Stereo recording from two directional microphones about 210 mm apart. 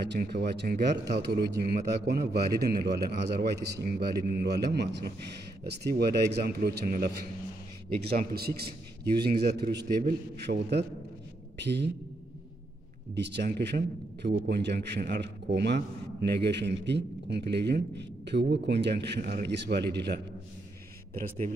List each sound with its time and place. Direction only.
0.0 s a man's voice: 50° right (ahead or behind)
13.1 s a man's voice: 55° right (ahead or behind)